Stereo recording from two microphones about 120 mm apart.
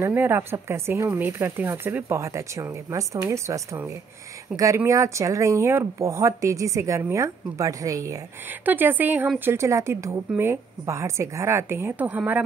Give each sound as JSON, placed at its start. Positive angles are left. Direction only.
{"t": 0.0, "sound": "speech", "side_deg": -20}
{"t": 8.5, "sound": "speech", "side_deg": -15}